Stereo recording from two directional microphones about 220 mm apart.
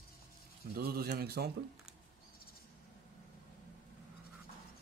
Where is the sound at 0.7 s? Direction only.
45° right (ahead or behind).